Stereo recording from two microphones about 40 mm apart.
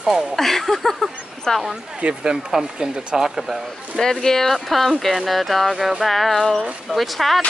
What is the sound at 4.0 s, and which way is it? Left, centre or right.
Speech, centre.